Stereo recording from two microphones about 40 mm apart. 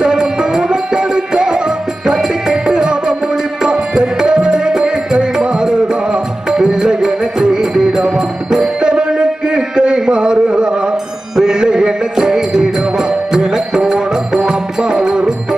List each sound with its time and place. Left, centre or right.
0.0 s music: right